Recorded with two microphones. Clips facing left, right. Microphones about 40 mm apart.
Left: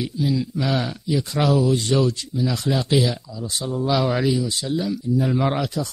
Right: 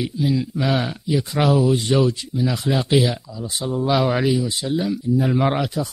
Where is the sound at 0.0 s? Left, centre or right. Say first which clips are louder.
Right 2 dB; centre.